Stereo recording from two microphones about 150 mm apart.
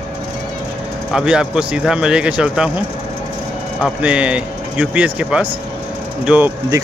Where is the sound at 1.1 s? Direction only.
5° right (ahead or behind).